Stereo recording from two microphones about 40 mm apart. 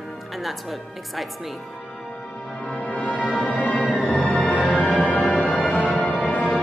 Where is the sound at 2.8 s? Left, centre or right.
Left.